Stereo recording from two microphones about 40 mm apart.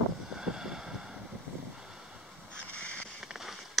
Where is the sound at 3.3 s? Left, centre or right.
Centre.